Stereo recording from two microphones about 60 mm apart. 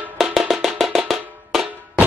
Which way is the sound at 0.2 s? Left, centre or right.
Centre.